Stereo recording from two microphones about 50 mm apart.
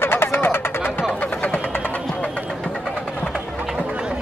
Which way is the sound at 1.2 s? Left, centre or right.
Left.